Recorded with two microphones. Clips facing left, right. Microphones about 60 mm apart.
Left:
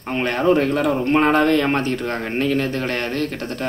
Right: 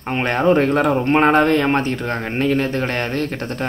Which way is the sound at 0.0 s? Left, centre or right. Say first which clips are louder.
Right 2 dB; right.